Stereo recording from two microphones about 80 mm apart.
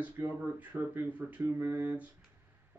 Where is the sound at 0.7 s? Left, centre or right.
Centre.